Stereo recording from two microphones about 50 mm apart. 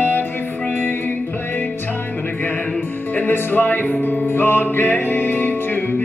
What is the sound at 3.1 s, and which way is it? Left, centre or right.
Music, left.